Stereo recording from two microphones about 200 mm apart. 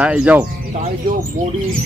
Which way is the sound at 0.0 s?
5° right (ahead or behind).